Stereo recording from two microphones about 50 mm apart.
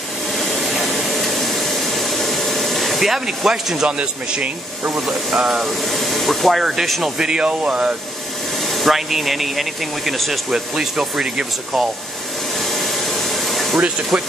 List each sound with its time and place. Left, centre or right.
0.3 s a sound: centre
4.0 s speech: right
4.9 s speech: centre
8.6 s speech: centre
10.5 s speech: centre
12.5 s vacuum cleaner: centre
13.7 s speech: right